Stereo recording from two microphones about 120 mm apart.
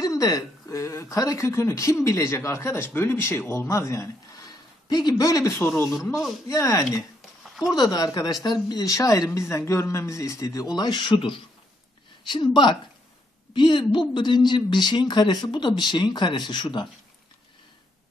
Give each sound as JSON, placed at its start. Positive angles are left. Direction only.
{"t": 0.0, "sound": "speech", "side_deg": 30}
{"t": 7.2, "sound": "a sound", "side_deg": 0}
{"t": 7.7, "sound": "speech", "side_deg": 35}